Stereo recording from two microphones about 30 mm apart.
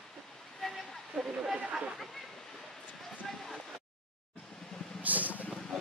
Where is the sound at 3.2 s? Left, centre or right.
Centre.